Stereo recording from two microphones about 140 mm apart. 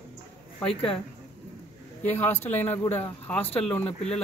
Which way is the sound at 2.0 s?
15° left (ahead or behind).